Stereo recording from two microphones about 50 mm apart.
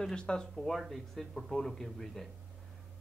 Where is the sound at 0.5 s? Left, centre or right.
Centre.